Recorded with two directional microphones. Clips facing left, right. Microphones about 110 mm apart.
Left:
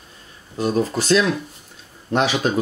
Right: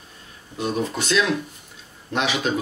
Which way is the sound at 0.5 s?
35° left (ahead or behind).